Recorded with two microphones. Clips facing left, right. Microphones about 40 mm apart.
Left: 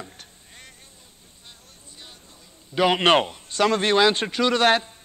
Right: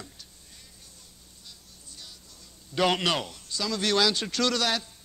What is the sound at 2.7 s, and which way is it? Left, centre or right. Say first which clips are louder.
Speech: left 4 dB; centre.